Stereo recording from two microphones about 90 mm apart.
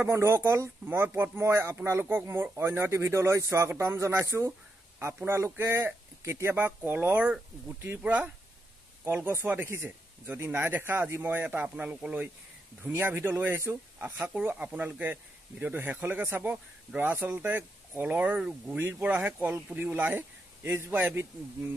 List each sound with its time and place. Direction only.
0.1 s speech: 30° right (ahead or behind)